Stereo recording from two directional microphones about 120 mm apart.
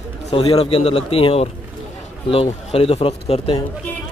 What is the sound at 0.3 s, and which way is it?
A man's voice, 55° left (ahead or behind).